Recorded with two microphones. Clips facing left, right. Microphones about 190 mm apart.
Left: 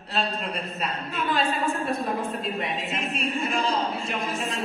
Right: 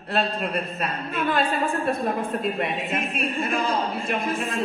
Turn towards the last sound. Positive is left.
turn(degrees=-55)  # may be behind; listen again after turning